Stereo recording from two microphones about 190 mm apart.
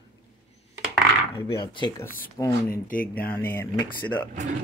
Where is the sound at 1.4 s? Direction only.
25° left (ahead or behind).